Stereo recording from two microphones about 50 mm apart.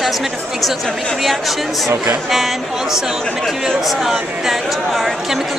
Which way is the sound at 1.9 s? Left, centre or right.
Right.